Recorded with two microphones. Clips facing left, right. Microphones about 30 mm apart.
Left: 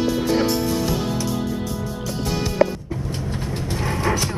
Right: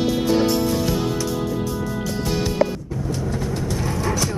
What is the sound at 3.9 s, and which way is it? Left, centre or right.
Music, left.